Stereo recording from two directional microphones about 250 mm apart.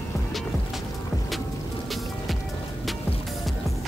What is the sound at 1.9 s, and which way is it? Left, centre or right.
Music, centre.